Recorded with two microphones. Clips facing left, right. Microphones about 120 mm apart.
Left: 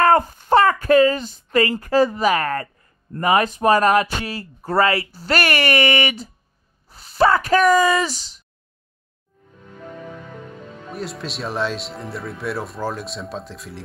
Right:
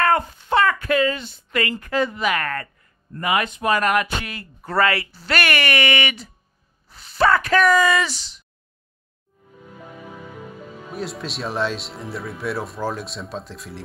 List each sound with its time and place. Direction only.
0.0 s speech: 40° left (ahead or behind)
4.7 s speech: 20° left (ahead or behind)
5.0 s speech: 40° left (ahead or behind)
6.9 s a sound: 35° left (ahead or behind)
7.2 s speech: 20° left (ahead or behind)
7.5 s speech: 35° left (ahead or behind)
9.7 s speech: 5° right (ahead or behind)